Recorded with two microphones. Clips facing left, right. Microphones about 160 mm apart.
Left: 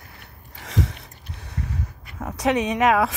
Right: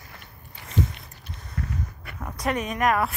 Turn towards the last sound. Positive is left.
turn(degrees=90)